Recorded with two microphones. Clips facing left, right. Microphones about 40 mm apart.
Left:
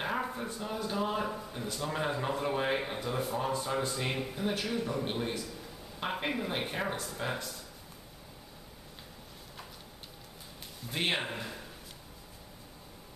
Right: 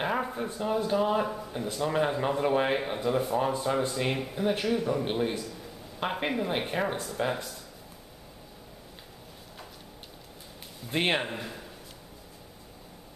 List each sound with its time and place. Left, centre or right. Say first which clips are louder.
0.0 s a sound: right 4 dB; centre
0.8 s a man's voice: right 4 dB; centre
5.4 s a sound: right 3 dB; centre
5.9 s a woman's voice: right 4 dB; centre
7.2 s speech: right 7 dB; right
10.9 s speech: right 5 dB; right
11.1 s speech: right 4 dB; centre